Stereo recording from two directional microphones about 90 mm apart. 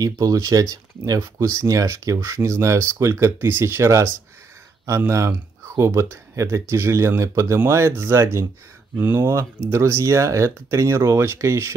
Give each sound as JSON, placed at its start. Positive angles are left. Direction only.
{"t": 0.0, "sound": "speech", "side_deg": -40}